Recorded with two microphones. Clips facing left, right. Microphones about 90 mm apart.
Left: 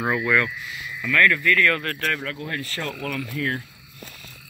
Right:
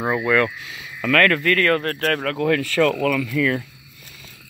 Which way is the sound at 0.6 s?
65° right (ahead or behind).